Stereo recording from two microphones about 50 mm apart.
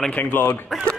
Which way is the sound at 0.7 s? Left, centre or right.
Centre.